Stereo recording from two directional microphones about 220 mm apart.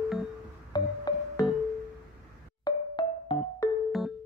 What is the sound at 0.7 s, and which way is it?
Music, 20° left (ahead or behind).